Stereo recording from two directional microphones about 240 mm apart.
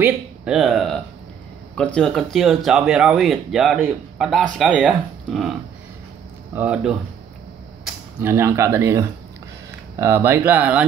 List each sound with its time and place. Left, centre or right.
0.0 s speech: centre